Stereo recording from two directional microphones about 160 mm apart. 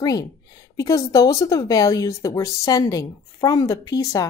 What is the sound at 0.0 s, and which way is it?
Speech, 20° left (ahead or behind).